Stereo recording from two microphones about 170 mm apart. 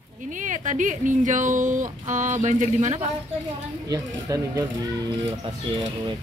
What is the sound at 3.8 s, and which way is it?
Speech, 20° right (ahead or behind).